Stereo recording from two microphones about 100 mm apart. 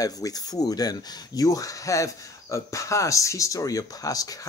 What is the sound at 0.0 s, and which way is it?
Speech, 40° left (ahead or behind).